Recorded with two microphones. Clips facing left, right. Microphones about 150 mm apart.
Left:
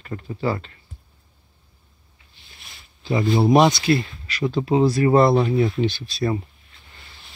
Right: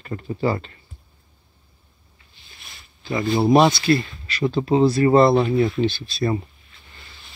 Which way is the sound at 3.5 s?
15° left (ahead or behind).